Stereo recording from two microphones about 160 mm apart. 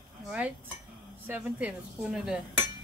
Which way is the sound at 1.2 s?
10° right (ahead or behind).